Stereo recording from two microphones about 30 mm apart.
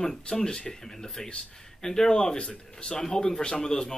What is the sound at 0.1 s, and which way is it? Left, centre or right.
Speech, left.